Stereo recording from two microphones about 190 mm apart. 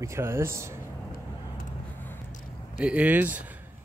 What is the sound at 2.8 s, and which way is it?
Speech, 5° right (ahead or behind).